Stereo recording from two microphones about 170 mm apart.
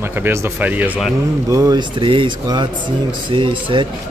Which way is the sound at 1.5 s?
20° right (ahead or behind).